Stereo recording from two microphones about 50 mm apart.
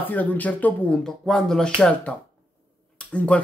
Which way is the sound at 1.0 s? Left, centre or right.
Centre.